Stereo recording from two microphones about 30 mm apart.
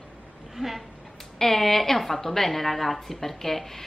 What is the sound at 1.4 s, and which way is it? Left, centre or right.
A woman's voice, centre.